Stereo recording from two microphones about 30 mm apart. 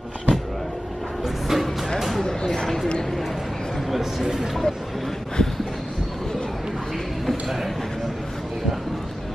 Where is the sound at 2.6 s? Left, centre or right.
Centre.